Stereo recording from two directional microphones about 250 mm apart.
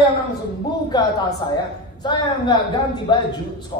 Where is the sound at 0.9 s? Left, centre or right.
Centre.